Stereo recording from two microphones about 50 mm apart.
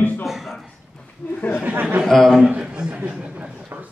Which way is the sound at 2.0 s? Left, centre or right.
Centre.